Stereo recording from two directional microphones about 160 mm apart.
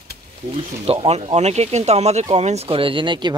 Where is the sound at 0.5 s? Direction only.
35° right (ahead or behind).